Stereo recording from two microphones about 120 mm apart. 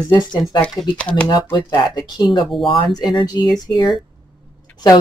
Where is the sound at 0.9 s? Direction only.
10° left (ahead or behind).